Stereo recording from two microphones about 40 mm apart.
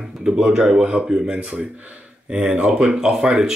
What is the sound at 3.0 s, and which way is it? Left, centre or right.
Speech, centre.